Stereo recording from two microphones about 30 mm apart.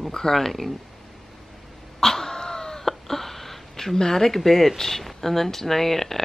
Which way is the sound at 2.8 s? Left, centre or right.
Centre.